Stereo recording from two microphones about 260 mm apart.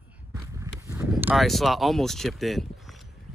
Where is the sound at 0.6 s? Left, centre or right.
Centre.